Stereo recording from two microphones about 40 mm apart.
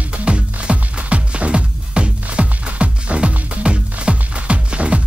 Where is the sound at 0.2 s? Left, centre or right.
Right.